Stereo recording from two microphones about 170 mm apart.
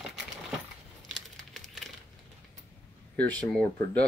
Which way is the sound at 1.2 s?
Centre (ahead or behind).